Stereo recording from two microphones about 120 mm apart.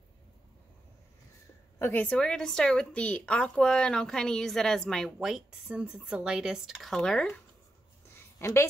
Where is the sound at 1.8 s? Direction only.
15° left (ahead or behind).